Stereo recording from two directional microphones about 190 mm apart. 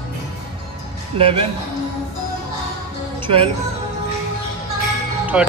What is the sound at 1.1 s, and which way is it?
Speech, 30° right (ahead or behind).